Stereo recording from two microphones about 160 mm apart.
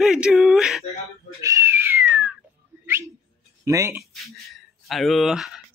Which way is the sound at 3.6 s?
20° right (ahead or behind).